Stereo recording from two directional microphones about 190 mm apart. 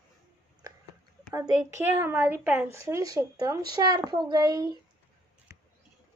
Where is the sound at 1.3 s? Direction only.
15° right (ahead or behind).